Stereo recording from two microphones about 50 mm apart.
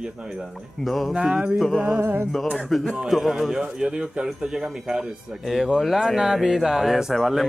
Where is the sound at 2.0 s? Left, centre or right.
Right.